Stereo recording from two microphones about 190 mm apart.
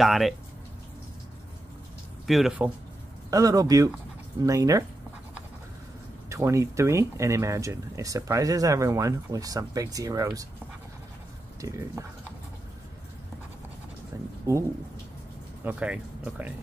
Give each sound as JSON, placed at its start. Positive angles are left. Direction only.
{"t": 0.0, "sound": "speech", "side_deg": 0}
{"t": 2.2, "sound": "speech", "side_deg": 0}
{"t": 3.3, "sound": "speech", "side_deg": -20}
{"t": 6.2, "sound": "speech", "side_deg": -15}
{"t": 11.6, "sound": "speech", "side_deg": -15}
{"t": 15.6, "sound": "speech", "side_deg": -5}